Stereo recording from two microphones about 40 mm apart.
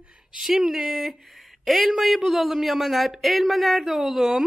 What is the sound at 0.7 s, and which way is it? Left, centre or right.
Speech, right.